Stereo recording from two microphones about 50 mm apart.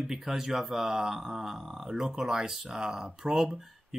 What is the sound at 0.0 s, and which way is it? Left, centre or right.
Speech, centre.